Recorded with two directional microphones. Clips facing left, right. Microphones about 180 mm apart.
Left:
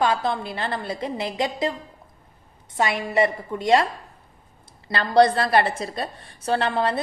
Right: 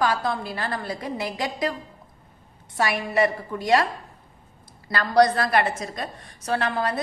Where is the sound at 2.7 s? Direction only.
20° left (ahead or behind).